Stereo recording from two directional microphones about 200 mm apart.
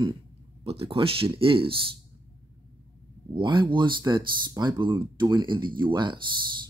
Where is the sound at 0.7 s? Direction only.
25° right (ahead or behind).